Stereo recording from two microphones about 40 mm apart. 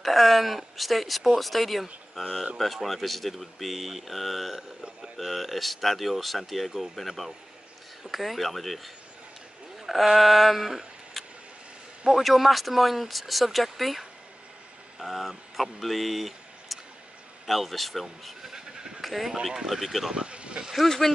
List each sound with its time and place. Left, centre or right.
0.0 s speech: centre
18.5 s sheep: centre
18.9 s speech: centre
20.1 s vehicle: right
20.7 s speech: centre